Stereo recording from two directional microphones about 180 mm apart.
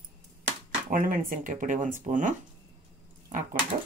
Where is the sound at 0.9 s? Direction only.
50° right (ahead or behind).